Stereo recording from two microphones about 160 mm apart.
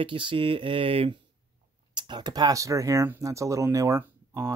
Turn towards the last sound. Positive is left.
turn(degrees=-20)  # may be behind; listen again after turning